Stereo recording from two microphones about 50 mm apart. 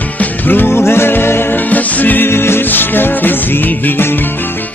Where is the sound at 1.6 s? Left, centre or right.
Left.